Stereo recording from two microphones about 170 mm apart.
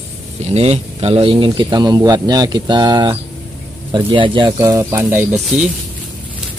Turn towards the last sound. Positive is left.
turn(degrees=-10)  # may be behind; listen again after turning